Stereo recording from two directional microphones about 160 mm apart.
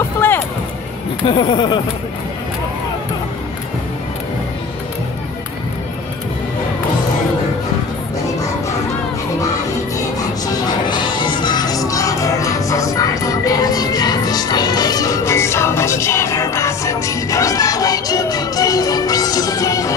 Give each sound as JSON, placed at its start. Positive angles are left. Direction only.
{"t": 0.2, "sound": "music", "side_deg": 15}
{"t": 1.2, "sound": "speech", "side_deg": 30}
{"t": 9.9, "sound": "music", "side_deg": 25}